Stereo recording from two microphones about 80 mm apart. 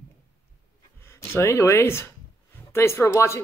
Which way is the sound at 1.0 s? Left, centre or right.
Left.